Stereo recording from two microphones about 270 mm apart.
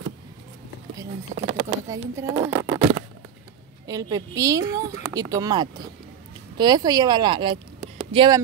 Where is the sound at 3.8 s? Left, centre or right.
Centre.